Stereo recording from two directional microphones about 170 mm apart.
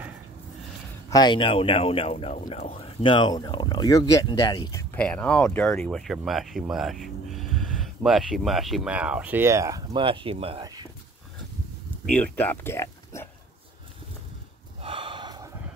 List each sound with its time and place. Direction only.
1.1 s speech: 25° left (ahead or behind)
4.9 s speech: 10° left (ahead or behind); by 10.6 s 35° right (ahead or behind)
10.6 s a sound: 20° right (ahead or behind)
12.1 s speech: 10° left (ahead or behind)
14.8 s snort: 30° right (ahead or behind)